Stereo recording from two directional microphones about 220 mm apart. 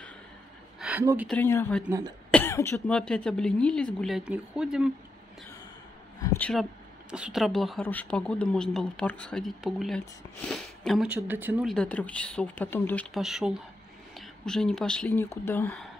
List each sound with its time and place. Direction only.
0.7 s speech: 5° right (ahead or behind)
1.3 s speech: 10° left (ahead or behind)
1.9 s speech: 15° right (ahead or behind)
2.3 s speech: 10° left (ahead or behind)
6.2 s speech: 10° left (ahead or behind)